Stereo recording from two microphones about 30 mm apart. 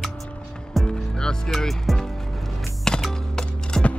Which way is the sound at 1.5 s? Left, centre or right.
Centre.